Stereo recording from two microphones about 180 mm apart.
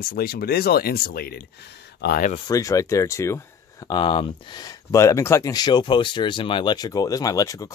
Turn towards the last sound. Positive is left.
turn(degrees=20)  # may be behind; listen again after turning